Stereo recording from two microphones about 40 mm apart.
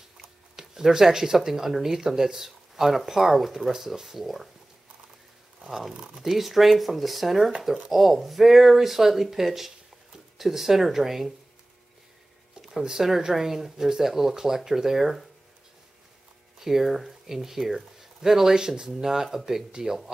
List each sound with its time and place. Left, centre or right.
0.6 s speech: centre
5.7 s speech: centre
12.6 s speech: centre
16.5 s speech: centre